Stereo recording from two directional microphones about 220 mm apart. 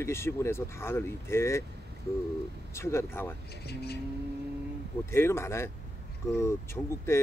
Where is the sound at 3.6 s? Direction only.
45° left (ahead or behind).